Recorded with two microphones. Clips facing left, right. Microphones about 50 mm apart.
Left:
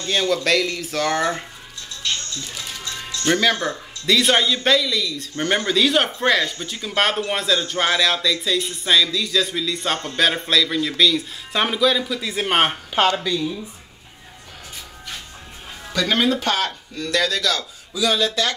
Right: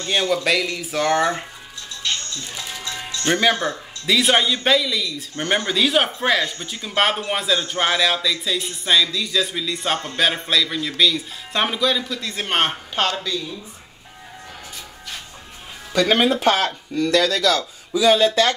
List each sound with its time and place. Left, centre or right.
0.0 s speech: centre
2.4 s speech: centre
15.9 s speech: centre; by 18.5 s right